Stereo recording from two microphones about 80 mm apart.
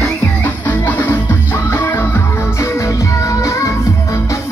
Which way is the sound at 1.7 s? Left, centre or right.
Left.